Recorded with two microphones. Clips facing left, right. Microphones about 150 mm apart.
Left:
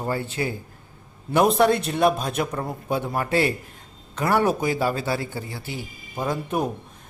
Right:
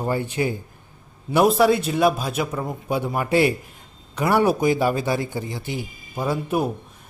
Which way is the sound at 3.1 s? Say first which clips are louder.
Right 4 dB; 15° right (ahead or behind).